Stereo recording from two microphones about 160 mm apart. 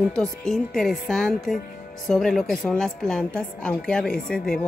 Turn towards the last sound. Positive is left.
turn(degrees=5)  # may be behind; listen again after turning